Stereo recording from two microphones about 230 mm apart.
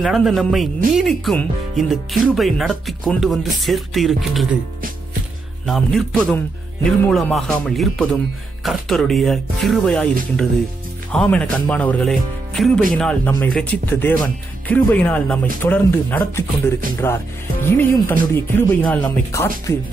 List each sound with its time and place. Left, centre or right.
0.0 s speech: centre
5.7 s speech: centre
11.1 s speech: centre